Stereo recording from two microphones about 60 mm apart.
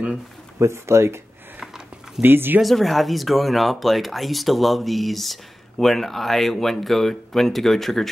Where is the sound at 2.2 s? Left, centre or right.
Right.